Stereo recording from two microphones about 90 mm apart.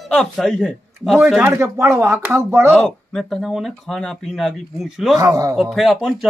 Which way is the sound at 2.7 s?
5° left (ahead or behind).